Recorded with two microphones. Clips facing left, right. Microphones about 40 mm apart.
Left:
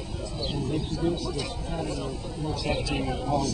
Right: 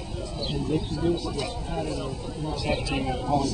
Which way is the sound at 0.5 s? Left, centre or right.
Centre.